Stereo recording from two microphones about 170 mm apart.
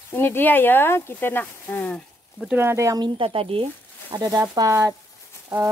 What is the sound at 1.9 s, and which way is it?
Speech, 5° right (ahead or behind).